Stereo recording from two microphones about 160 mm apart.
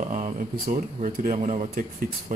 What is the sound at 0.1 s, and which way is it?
Speech, 50° right (ahead or behind).